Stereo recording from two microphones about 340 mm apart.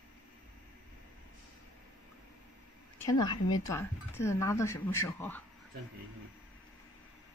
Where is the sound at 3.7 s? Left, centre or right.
Centre.